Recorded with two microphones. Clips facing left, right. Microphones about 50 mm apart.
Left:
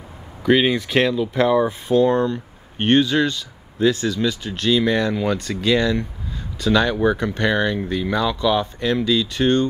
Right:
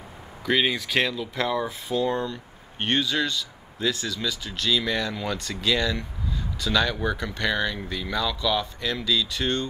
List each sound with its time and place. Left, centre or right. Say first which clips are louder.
0.4 s speech: left 7 dB; centre
1.9 s speech: left 8 dB; left
5.1 s speech: left 8 dB; centre; by 9.7 s left